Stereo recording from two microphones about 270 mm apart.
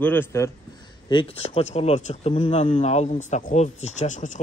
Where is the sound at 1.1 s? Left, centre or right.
Centre.